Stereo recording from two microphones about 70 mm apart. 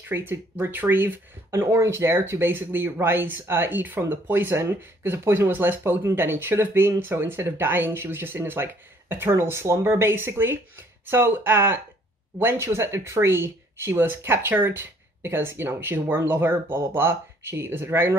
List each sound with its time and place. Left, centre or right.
0.1 s speech: right
1.5 s speech: right